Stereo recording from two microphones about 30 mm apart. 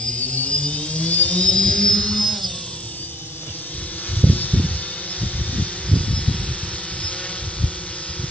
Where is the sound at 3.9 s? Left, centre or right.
Left.